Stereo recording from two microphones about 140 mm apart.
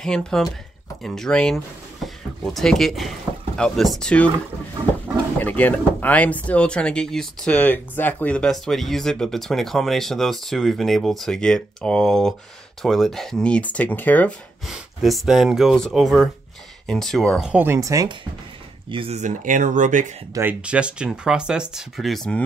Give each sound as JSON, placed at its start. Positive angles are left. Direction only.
{"t": 0.0, "sound": "speech", "side_deg": 5}
{"t": 5.4, "sound": "speech", "side_deg": 10}
{"t": 14.7, "sound": "speech", "side_deg": 0}
{"t": 17.5, "sound": "speech", "side_deg": -15}
{"t": 17.7, "sound": "speech", "side_deg": -25}
{"t": 18.9, "sound": "speech", "side_deg": -40}
{"t": 19.1, "sound": "speech", "side_deg": -60}
{"t": 20.3, "sound": "speech", "side_deg": -10}